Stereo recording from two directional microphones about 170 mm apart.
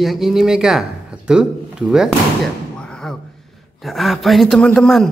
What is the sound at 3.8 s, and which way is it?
Speech, centre (ahead or behind).